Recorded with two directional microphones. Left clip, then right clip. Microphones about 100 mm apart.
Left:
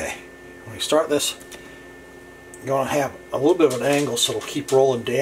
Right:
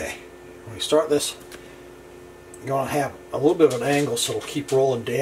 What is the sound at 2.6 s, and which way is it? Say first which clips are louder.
Speech: left 2 dB; 20° left (ahead or behind).